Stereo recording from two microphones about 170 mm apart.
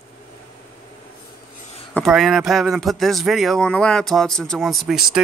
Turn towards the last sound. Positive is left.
turn(degrees=0)  # may be behind; listen again after turning